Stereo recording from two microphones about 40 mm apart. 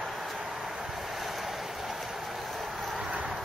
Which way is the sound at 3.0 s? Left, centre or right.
Right.